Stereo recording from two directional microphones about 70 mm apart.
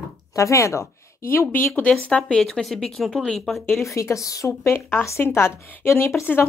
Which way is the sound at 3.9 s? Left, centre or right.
Left.